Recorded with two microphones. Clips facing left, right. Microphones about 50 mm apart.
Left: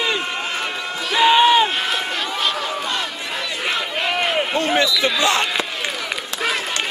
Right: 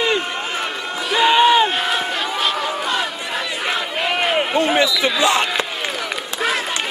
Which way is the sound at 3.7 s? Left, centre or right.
Centre.